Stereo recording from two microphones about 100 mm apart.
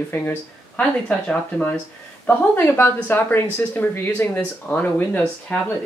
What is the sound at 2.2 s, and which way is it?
Speech, 20° left (ahead or behind).